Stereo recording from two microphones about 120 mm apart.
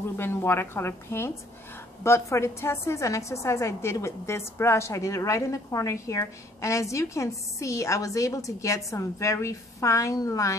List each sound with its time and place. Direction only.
0.2 s a woman's voice: 20° left (ahead or behind)